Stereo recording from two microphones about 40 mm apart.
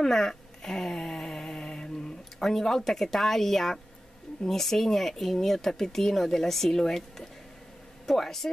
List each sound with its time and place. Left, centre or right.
0.0 s a sound: centre
2.3 s speech: centre
8.1 s speech: centre